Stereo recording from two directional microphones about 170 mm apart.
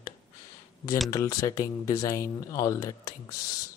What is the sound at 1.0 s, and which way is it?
Speech, 20° left (ahead or behind).